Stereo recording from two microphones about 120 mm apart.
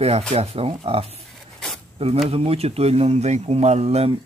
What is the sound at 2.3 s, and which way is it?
Speech, 55° right (ahead or behind).